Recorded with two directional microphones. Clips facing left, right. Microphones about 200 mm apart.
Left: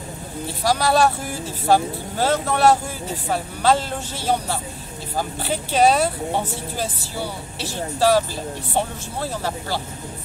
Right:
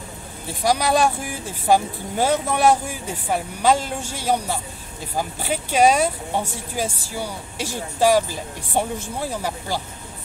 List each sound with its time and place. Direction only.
0.7 s speech: 15° right (ahead or behind)
7.5 s speech: 15° right (ahead or behind)